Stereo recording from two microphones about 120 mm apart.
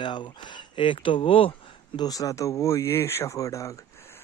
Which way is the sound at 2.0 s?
30° left (ahead or behind).